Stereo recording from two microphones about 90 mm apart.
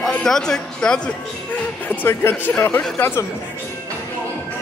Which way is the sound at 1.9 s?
20° left (ahead or behind).